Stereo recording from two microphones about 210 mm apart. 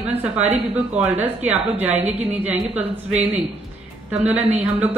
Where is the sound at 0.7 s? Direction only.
5° right (ahead or behind).